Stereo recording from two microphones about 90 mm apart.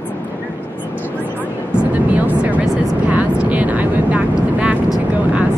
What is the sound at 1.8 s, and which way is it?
Vehicle, 15° right (ahead or behind).